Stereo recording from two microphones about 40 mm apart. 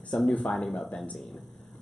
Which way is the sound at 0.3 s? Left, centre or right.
Left.